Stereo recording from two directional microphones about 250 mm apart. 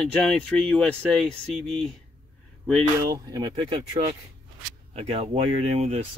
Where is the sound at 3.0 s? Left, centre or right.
Centre.